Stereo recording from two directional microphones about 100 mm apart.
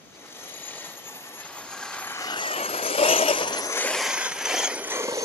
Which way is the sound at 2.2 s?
45° left (ahead or behind).